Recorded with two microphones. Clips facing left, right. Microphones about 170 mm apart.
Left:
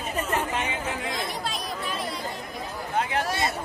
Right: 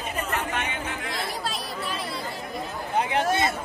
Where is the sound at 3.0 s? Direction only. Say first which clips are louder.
Right 2 dB; 20° right (ahead or behind).